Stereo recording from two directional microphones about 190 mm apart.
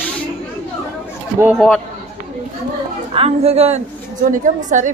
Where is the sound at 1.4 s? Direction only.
5° right (ahead or behind).